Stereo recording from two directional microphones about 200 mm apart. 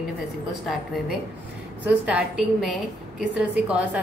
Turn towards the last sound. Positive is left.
turn(degrees=-5)  # may be behind; listen again after turning